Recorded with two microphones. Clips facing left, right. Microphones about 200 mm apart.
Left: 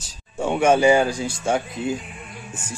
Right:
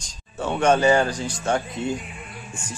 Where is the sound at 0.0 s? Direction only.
10° left (ahead or behind).